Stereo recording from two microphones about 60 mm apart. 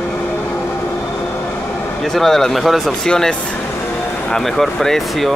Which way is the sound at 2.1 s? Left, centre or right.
Centre.